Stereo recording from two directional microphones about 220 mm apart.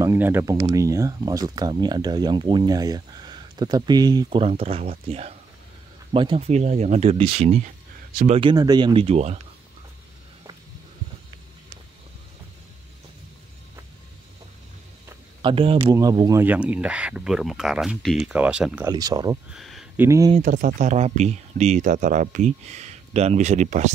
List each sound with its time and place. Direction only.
0.0 s speech: 10° right (ahead or behind); by 9.4 s 30° right (ahead or behind)
15.0 s speech: 25° right (ahead or behind); by 18.9 s 5° right (ahead or behind)
18.9 s speech: 15° right (ahead or behind)
19.5 s a sound: centre (ahead or behind)
20.1 s speech: 15° right (ahead or behind)
20.3 s speech: 35° right (ahead or behind)